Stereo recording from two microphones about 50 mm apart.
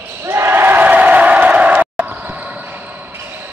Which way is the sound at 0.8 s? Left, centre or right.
Right.